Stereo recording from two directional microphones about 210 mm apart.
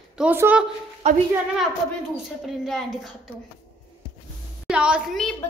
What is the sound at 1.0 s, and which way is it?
Speech, 30° right (ahead or behind).